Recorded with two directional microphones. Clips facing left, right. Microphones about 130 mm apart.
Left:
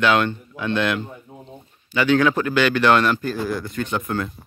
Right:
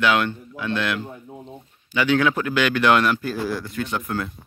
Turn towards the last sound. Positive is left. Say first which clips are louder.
# left 2 dB
turn(degrees=0)  # may be behind; listen again after turning